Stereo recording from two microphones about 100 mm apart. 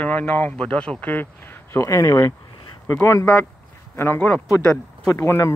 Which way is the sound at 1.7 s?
35° left (ahead or behind).